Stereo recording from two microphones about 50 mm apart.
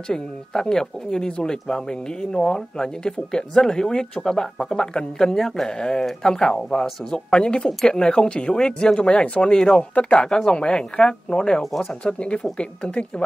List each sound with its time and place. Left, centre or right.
0.1 s speech: centre
11.6 s speech: centre
12.0 s speech: left